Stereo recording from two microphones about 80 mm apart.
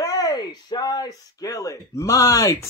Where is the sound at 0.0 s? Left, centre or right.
Left.